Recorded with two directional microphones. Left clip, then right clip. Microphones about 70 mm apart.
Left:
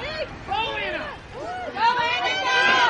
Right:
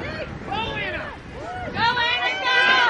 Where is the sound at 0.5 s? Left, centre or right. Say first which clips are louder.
Left 1 dB; centre.